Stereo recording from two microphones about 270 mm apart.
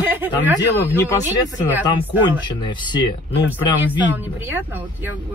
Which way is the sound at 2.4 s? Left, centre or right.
Centre.